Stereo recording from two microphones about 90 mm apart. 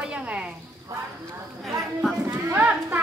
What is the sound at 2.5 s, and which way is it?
Speech, 25° right (ahead or behind).